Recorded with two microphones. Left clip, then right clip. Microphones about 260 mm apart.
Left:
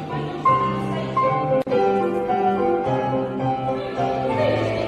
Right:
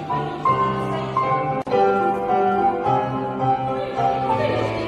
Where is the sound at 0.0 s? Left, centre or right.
Centre.